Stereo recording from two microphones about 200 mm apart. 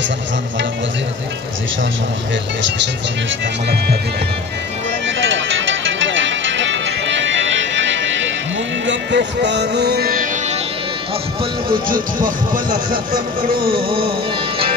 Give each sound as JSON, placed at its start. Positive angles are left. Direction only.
{"t": 5.5, "sound": "music", "side_deg": -70}
{"t": 11.9, "sound": "speech", "side_deg": -45}
{"t": 13.7, "sound": "music", "side_deg": -30}